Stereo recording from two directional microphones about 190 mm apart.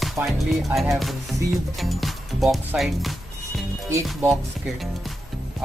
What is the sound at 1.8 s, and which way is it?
Speech, centre (ahead or behind).